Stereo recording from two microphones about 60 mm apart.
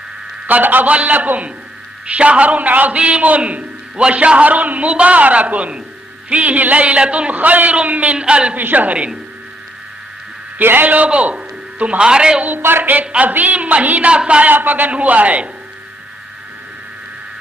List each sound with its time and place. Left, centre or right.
0.5 s a man's voice: right
8.5 s a man's voice: right
10.6 s a man's voice: right; by 12.4 s centre
12.4 s speech: right
13.0 s a man's voice: right
14.5 s a man's voice: right